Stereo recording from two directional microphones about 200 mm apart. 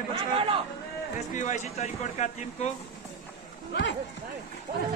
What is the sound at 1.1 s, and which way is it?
Speech, 35° left (ahead or behind).